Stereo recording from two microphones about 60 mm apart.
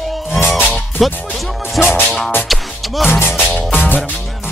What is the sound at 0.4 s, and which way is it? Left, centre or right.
Music, left.